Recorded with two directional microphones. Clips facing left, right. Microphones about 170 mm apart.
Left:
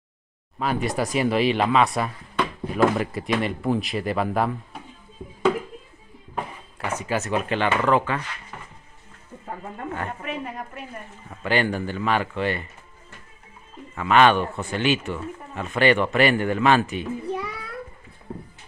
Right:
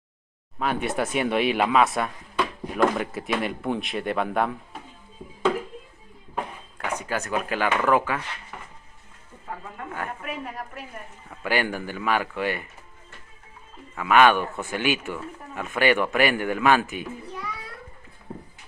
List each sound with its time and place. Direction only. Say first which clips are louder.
0.6 s speech: left 1 dB; centre (ahead or behind)
6.3 s speech: even; 5° left (ahead or behind)
9.9 s a man's voice: even; 5° right (ahead or behind)
13.9 s a man's voice: left 1 dB; 10° right (ahead or behind)